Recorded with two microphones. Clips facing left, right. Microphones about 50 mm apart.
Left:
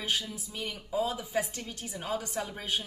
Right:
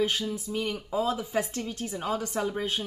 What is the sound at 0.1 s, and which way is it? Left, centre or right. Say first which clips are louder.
Speech: right 3 dB; centre.